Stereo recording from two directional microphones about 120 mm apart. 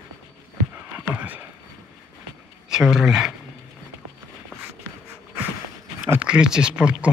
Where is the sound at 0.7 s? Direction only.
15° right (ahead or behind).